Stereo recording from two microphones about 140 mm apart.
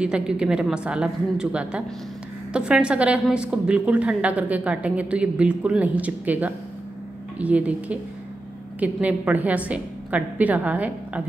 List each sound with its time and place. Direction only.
0.0 s a woman's voice: 5° right (ahead or behind)